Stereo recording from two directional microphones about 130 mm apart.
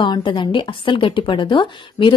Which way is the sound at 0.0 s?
35° left (ahead or behind).